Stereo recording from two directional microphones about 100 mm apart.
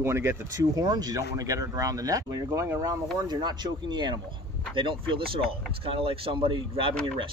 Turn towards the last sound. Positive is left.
turn(degrees=-60)  # may be behind; listen again after turning